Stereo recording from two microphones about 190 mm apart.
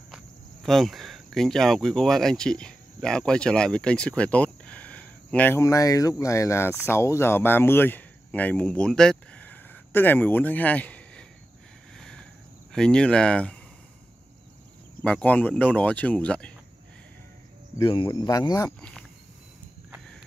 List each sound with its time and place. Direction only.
0.1 s speech: centre (ahead or behind)
12.0 s cricket: 5° left (ahead or behind)
12.7 s speech: 5° left (ahead or behind)
15.0 s speech: 5° left (ahead or behind)
17.7 s speech: 25° left (ahead or behind)
18.8 s speech: 5° left (ahead or behind)